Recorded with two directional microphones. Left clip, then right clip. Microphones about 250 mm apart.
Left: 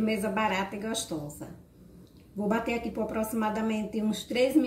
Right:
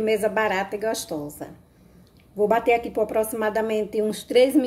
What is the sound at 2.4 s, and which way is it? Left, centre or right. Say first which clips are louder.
A woman's voice: right 10 dB; right.